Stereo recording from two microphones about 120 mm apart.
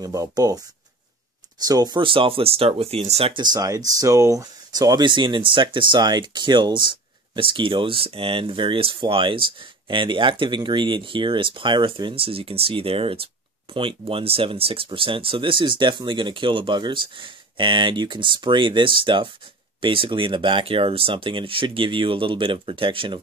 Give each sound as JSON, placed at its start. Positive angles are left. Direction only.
{"t": 0.0, "sound": "speech", "side_deg": -30}
{"t": 1.7, "sound": "speech", "side_deg": -35}
{"t": 3.3, "sound": "speech", "side_deg": -35}